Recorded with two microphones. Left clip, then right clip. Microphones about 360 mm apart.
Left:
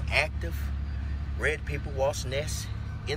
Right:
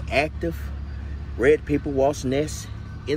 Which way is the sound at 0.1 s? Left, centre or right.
Centre.